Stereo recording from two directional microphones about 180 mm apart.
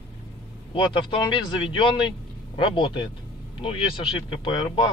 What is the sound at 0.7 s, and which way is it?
Speech, 30° left (ahead or behind).